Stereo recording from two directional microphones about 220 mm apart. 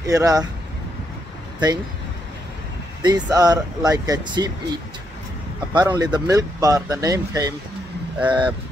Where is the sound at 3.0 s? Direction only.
20° right (ahead or behind).